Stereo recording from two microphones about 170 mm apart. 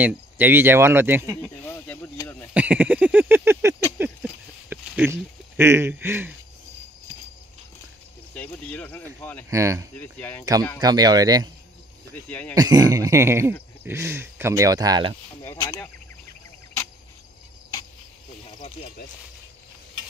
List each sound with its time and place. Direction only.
0.0 s speech: 10° right (ahead or behind)
1.6 s a sound: 10° left (ahead or behind)
2.5 s a sound: 10° right (ahead or behind)
4.6 s speech: 10° right (ahead or behind)
8.4 s a sound: 10° left (ahead or behind)
9.5 s speech: 20° right (ahead or behind)
9.9 s speech: 10° left (ahead or behind)
10.8 s speech: 25° right (ahead or behind)
12.3 s speech: 10° left (ahead or behind)
12.5 s speech: 25° right (ahead or behind)
15.4 s speech: 25° left (ahead or behind)